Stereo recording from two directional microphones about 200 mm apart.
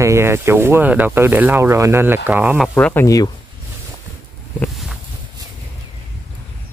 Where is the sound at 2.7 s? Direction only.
10° left (ahead or behind).